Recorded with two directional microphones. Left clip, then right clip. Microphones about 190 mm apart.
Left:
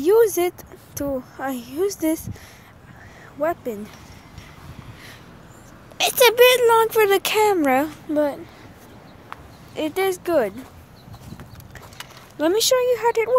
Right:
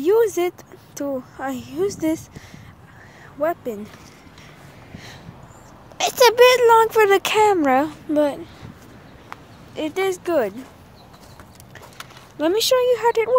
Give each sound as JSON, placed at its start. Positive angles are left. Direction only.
{"t": 0.0, "sound": "speech", "side_deg": 0}
{"t": 3.3, "sound": "speech", "side_deg": 0}
{"t": 5.9, "sound": "speech", "side_deg": -5}
{"t": 9.8, "sound": "speech", "side_deg": 5}
{"t": 12.4, "sound": "speech", "side_deg": 0}